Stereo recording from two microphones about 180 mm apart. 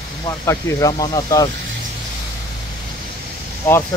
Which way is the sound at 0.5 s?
20° left (ahead or behind).